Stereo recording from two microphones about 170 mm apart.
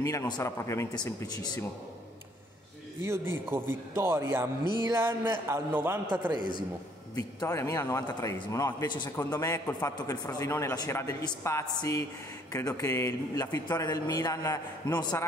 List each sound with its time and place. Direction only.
0.0 s speech: 20° left (ahead or behind)
3.0 s a man's voice: 15° right (ahead or behind)
7.2 s a man's voice: 20° left (ahead or behind)